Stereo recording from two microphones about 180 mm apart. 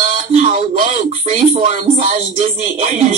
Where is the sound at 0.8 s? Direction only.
40° right (ahead or behind).